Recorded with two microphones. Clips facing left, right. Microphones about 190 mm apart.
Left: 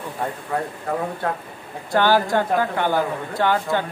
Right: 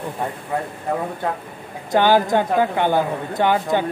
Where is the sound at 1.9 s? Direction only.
20° right (ahead or behind).